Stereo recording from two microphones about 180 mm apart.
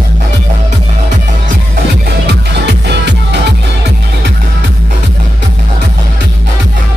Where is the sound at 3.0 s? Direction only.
70° right (ahead or behind).